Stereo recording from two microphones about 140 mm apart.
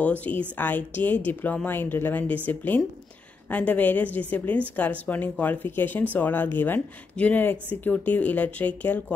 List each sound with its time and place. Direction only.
0.0 s speech: 10° left (ahead or behind)